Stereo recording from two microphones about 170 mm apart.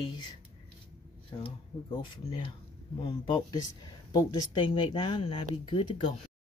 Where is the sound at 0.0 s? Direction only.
25° left (ahead or behind).